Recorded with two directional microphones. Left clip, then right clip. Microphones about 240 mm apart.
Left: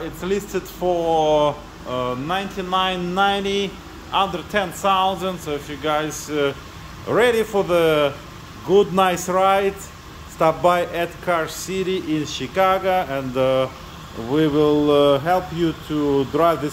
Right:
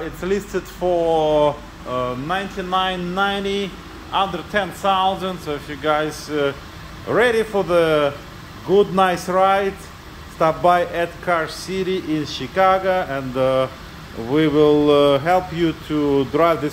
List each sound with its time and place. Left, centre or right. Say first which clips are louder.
0.2 s speech: right 1 dB; centre